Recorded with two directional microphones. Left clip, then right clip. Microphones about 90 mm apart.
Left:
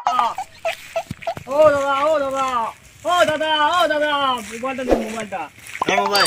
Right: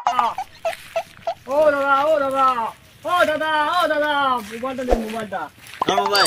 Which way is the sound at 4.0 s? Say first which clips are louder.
Even; 10° right (ahead or behind).